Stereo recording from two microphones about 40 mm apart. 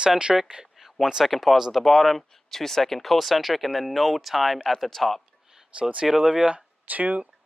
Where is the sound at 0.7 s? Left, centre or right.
Centre.